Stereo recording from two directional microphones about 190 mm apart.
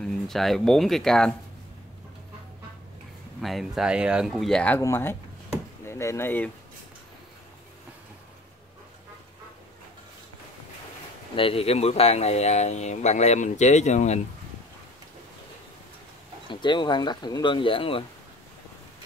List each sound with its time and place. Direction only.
0.0 s speech: centre (ahead or behind)
3.3 s speech: centre (ahead or behind)
11.3 s speech: 30° left (ahead or behind)
16.4 s speech: 25° left (ahead or behind)